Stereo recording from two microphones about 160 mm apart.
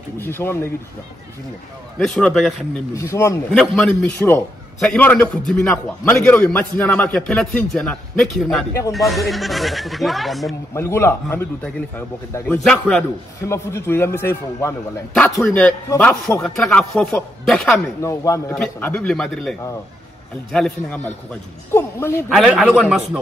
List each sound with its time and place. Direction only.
0.2 s a man's voice: 15° left (ahead or behind)
2.0 s speech: 5° left (ahead or behind)
3.0 s speech: 20° left (ahead or behind)
3.5 s a man's voice: 5° left (ahead or behind)
10.7 s a man's voice: 15° left (ahead or behind)
12.6 s a man's voice: 5° left (ahead or behind)
13.4 s a man's voice: 15° left (ahead or behind)
18.0 s speech: 20° left (ahead or behind); by 19.5 s 5° left (ahead or behind)
20.5 s a man's voice: 5° left (ahead or behind)
22.3 s speech: centre (ahead or behind)